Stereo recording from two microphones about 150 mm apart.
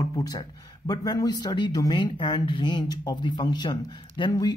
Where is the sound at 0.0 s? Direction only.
25° left (ahead or behind).